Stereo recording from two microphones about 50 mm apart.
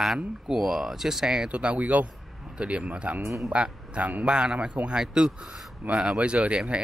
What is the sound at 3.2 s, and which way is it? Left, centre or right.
Speech, right.